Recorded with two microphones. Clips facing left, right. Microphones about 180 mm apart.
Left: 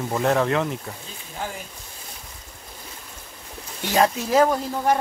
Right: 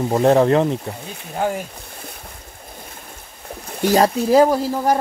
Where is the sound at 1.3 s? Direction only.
60° right (ahead or behind).